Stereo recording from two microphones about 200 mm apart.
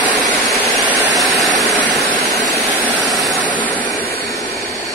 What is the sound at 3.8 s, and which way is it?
Vehicle, 25° left (ahead or behind).